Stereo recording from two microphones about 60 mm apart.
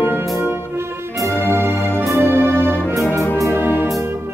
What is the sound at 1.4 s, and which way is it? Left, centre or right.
Music, left.